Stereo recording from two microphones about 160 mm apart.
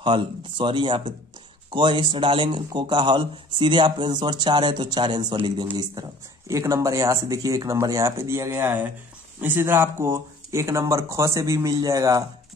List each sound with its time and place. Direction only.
0.0 s a man's voice: 30° right (ahead or behind)